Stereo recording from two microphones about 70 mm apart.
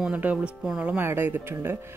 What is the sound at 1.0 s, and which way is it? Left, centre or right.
Speech, right.